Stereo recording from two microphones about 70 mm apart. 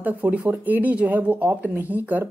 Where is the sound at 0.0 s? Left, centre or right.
Right.